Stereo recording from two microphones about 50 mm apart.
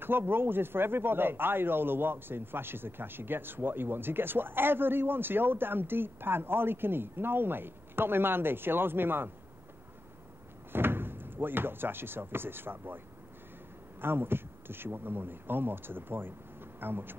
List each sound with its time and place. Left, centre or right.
0.0 s speech: right
10.7 s speech: right
14.0 s speech: right